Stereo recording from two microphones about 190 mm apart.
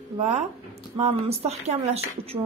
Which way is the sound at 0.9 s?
35° right (ahead or behind).